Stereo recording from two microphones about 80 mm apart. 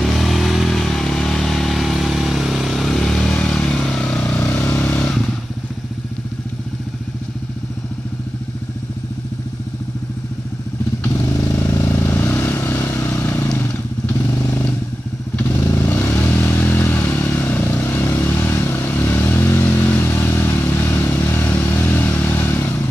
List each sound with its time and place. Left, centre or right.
0.0 s vehicle: centre; by 5.0 s left
11.1 s vehicle: left
13.6 s motorcycle: left
15.5 s vehicle: left